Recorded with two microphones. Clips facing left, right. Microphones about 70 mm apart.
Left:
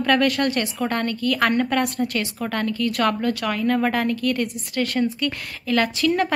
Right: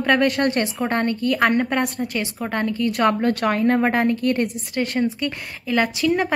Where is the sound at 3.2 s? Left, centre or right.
Right.